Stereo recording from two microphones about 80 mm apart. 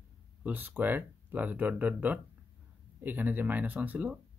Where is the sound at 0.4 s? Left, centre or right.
Right.